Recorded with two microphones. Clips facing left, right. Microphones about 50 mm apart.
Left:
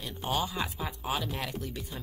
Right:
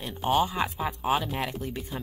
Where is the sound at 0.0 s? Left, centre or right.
Right.